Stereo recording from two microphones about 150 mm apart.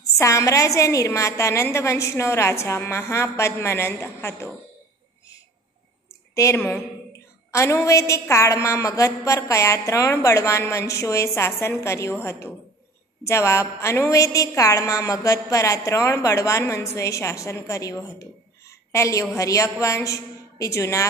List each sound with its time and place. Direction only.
0.2 s a woman's voice: 20° left (ahead or behind)
6.3 s a woman's voice: 20° left (ahead or behind)